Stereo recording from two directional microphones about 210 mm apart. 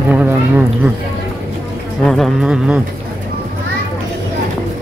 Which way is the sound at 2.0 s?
Centre (ahead or behind).